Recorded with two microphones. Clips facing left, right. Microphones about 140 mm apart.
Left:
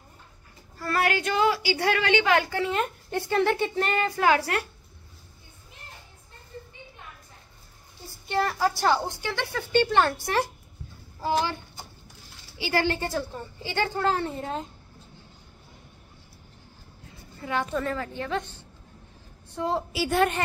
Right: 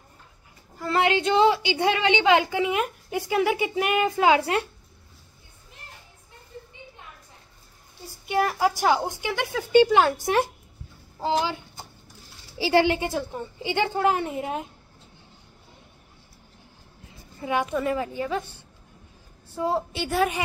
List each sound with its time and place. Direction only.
0.7 s a woman's voice: 20° right (ahead or behind)
8.3 s a woman's voice: 10° right (ahead or behind)
10.2 s a woman's voice: 20° right (ahead or behind)
12.5 s a woman's voice: 30° right (ahead or behind)
12.8 s a woman's voice: 15° right (ahead or behind)
17.4 s a woman's voice: 15° right (ahead or behind)